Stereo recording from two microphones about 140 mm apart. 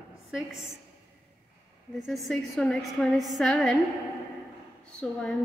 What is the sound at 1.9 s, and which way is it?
A woman's voice, centre (ahead or behind).